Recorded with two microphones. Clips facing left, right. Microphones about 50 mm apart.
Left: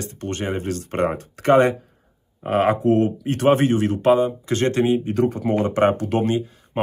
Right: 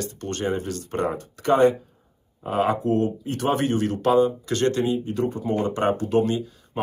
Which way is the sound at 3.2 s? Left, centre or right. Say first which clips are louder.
Left 6 dB; left.